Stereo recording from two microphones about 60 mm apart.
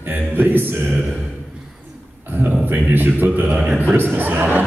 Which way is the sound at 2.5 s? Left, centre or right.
Right.